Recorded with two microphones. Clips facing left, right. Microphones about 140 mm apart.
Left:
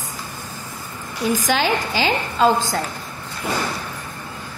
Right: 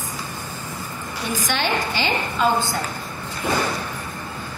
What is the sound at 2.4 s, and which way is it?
Speech, 90° left.